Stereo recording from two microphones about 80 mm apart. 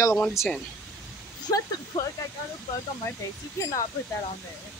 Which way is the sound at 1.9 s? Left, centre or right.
Left.